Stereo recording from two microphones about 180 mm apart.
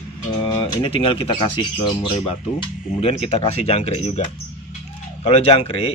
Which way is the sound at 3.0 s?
35° left (ahead or behind).